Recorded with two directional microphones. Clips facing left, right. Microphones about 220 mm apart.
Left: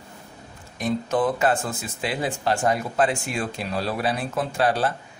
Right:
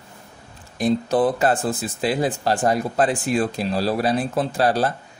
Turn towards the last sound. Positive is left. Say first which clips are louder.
# right 3 dB
turn(degrees=-35)  # may be behind; listen again after turning